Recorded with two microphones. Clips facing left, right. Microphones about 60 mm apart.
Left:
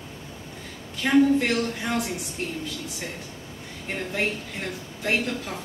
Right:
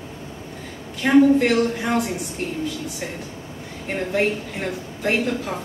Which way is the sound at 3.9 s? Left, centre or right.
Centre.